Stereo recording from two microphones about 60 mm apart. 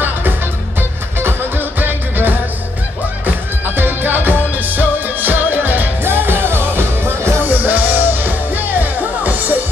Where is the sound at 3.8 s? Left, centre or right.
Right.